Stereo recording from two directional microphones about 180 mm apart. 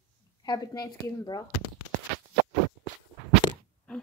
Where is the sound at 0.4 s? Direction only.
20° left (ahead or behind).